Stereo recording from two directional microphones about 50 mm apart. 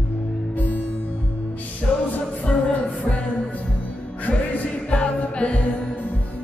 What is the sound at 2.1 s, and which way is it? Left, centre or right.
Music, left.